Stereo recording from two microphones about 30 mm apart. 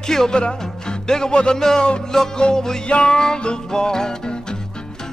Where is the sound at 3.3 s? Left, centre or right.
Left.